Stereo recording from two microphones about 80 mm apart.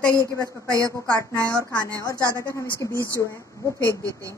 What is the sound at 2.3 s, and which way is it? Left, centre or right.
Speech, left.